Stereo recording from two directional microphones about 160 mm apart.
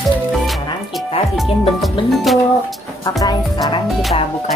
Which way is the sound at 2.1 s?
Centre (ahead or behind).